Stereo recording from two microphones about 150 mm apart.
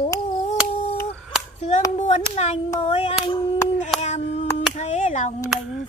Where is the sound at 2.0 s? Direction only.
45° left (ahead or behind).